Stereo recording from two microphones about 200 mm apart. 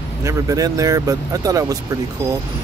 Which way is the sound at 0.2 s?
15° right (ahead or behind).